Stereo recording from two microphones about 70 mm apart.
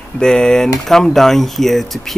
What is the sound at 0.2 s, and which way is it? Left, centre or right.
Speech, centre.